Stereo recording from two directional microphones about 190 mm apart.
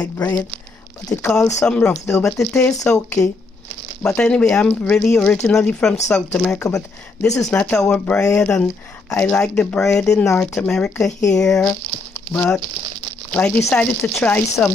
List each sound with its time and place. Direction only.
0.0 s speech: 10° left (ahead or behind)
7.2 s speech: 15° left (ahead or behind)
7.5 s speech: 5° left (ahead or behind)